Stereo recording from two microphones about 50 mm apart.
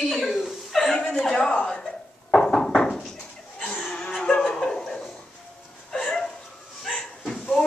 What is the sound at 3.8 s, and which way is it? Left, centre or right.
Music, centre.